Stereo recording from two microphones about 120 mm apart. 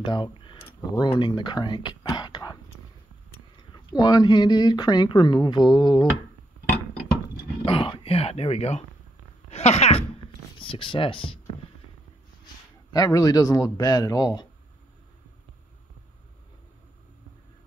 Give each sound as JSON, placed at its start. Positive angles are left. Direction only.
{"t": 0.0, "sound": "a sound", "side_deg": 40}
{"t": 0.9, "sound": "speech", "side_deg": 40}
{"t": 7.6, "sound": "speech", "side_deg": 50}
{"t": 10.6, "sound": "speech", "side_deg": 45}
{"t": 12.9, "sound": "speech", "side_deg": 30}